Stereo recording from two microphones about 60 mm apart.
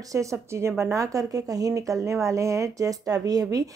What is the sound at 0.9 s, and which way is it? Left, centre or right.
Speech, right.